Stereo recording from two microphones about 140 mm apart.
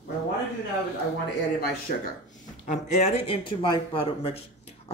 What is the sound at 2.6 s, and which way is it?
Speech, 60° left (ahead or behind).